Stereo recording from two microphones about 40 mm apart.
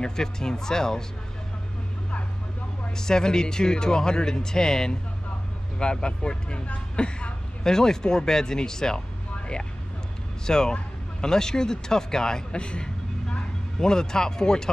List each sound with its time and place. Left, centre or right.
0.0 s speech: centre
3.0 s speech: centre
10.4 s speech: centre